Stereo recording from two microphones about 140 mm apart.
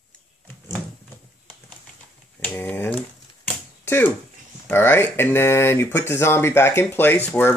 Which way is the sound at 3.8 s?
15° left (ahead or behind).